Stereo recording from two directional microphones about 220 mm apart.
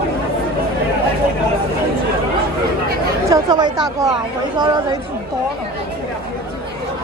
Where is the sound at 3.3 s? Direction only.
20° right (ahead or behind).